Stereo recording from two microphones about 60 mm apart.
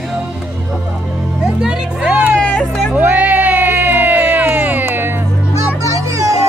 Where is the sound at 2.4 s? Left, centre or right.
Left.